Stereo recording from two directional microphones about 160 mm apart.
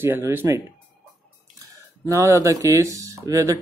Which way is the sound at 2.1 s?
20° right (ahead or behind).